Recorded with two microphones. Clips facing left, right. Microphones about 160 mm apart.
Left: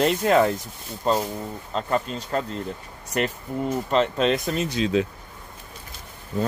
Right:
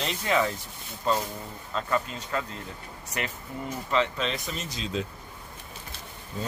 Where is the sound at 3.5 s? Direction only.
50° left (ahead or behind); by 5.0 s 70° left (ahead or behind).